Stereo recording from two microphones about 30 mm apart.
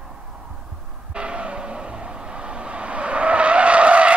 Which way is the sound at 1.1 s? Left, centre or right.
Right.